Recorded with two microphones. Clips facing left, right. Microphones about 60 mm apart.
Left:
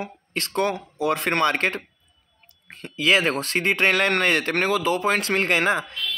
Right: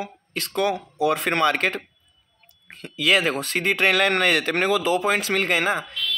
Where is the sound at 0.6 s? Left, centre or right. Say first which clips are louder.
Right 3 dB; centre.